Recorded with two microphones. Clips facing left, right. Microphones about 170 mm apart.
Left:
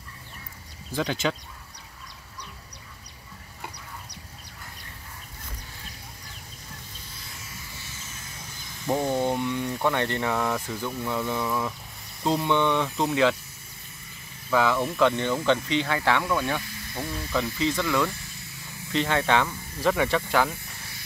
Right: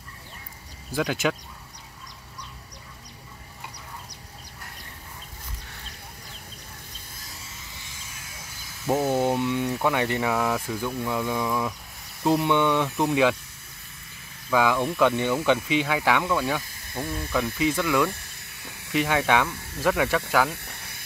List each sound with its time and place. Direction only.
0.9 s speech: 5° right (ahead or behind)
7.7 s music: 15° right (ahead or behind)
8.8 s speech: 5° right (ahead or behind)
14.5 s speech: 10° right (ahead or behind)
14.8 s speech: centre (ahead or behind)
15.0 s speech: 10° right (ahead or behind)
20.5 s snake: 65° right (ahead or behind)